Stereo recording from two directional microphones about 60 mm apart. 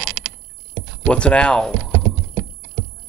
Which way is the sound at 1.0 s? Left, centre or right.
Centre.